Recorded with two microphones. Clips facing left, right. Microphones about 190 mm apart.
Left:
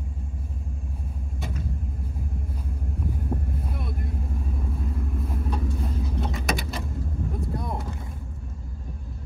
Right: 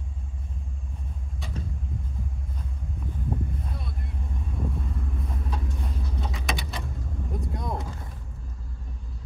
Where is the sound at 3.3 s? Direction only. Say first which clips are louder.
Left 1 dB; centre (ahead or behind).